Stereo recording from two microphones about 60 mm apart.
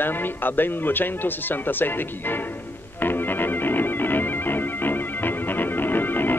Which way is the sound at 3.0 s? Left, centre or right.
Left.